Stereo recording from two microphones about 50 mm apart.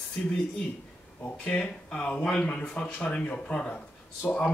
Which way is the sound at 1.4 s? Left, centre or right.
Left.